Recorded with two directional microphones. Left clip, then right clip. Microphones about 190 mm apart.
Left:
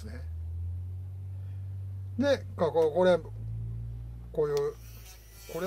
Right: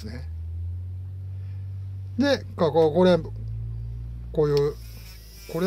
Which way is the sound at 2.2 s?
30° right (ahead or behind).